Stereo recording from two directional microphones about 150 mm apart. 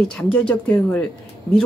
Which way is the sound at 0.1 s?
10° left (ahead or behind).